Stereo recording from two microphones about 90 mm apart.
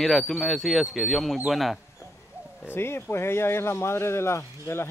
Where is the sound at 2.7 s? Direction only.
25° left (ahead or behind).